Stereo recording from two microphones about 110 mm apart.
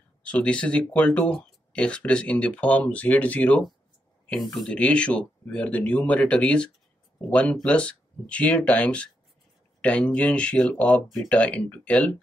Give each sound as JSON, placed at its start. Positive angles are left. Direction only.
{"t": 0.2, "sound": "speech", "side_deg": 10}
{"t": 4.3, "sound": "speech", "side_deg": 0}